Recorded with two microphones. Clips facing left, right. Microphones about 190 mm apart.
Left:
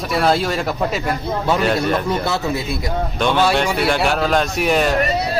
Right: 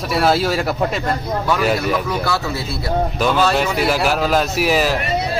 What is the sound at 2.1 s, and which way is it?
Speech, 20° left (ahead or behind).